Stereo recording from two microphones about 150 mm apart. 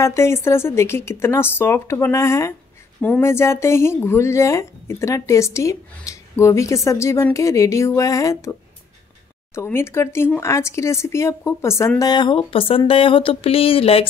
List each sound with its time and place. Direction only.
0.0 s a woman's voice: 20° left (ahead or behind)
9.6 s a woman's voice: 15° left (ahead or behind)
12.0 s speech: 30° left (ahead or behind)